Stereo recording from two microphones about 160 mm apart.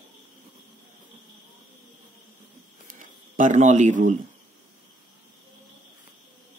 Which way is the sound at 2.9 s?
55° right (ahead or behind).